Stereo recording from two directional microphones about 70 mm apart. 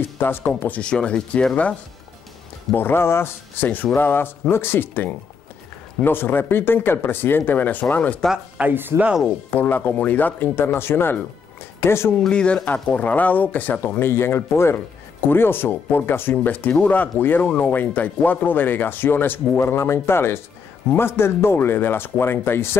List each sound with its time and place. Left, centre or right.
0.2 s speech: left
2.7 s speech: left
3.6 s speech: left
8.5 s speech: right
9.5 s speech: left
12.2 s speech: centre; by 19.6 s left
19.6 s speech: left